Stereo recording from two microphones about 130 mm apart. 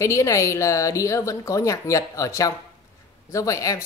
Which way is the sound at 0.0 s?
25° left (ahead or behind).